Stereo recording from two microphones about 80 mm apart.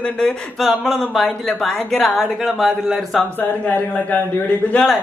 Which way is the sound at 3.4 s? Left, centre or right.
Left.